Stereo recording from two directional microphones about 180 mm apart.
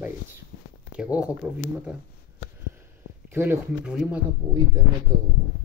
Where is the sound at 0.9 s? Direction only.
5° right (ahead or behind).